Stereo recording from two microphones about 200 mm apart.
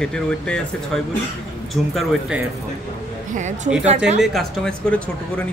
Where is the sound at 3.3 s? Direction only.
35° right (ahead or behind).